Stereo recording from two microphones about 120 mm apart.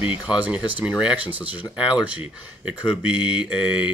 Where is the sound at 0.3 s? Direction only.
10° right (ahead or behind).